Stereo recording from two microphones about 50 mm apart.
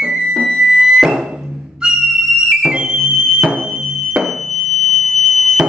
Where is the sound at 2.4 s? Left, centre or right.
Centre.